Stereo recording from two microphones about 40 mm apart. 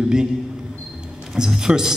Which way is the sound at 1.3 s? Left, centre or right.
Centre.